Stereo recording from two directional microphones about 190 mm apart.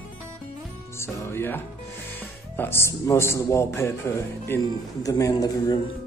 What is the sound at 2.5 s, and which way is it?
A man's voice, 10° left (ahead or behind).